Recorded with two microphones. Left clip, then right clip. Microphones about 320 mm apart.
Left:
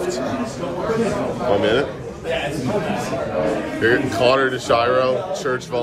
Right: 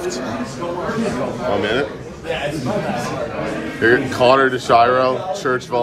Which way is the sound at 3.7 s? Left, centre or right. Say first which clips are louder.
Right 4 dB; centre.